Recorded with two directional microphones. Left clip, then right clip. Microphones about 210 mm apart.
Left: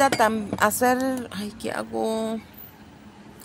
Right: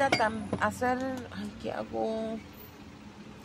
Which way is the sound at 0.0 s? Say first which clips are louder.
Left 7 dB; 35° left (ahead or behind).